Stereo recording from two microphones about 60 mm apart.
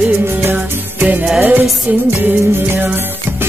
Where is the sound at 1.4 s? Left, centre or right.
Right.